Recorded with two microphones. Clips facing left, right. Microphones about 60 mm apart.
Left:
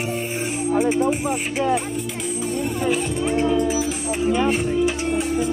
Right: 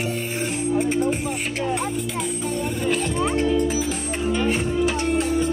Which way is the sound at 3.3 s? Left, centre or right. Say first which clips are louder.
Left 3 dB; centre.